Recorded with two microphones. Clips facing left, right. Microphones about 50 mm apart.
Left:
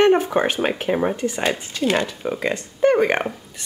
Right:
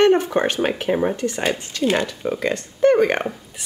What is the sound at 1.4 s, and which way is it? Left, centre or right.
Speech, centre.